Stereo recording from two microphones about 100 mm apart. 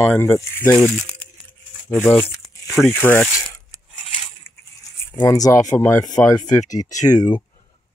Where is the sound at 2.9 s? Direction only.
25° left (ahead or behind).